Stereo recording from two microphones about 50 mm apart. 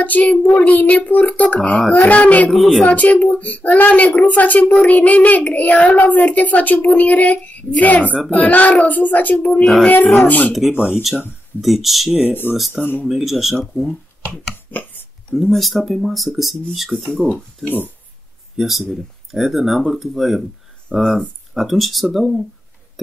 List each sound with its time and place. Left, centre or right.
0.0 s a child's voice: left
1.6 s speech: centre
2.0 s a child's voice: left
2.5 s speech: centre
2.8 s a child's voice: left
11.6 s speech: centre
12.4 s speech: left
13.1 s speech: centre
14.7 s chopping: left
15.3 s speech: centre
17.6 s a child's voice: left
18.6 s speech: centre